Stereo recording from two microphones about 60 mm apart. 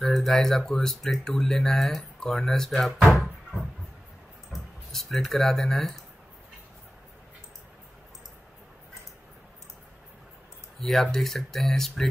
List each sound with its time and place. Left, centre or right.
0.0 s speech: centre
10.8 s speech: centre